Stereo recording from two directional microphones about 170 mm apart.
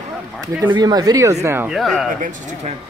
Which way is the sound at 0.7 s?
25° right (ahead or behind).